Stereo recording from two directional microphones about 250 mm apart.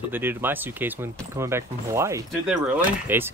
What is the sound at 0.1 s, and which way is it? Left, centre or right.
Speech, centre.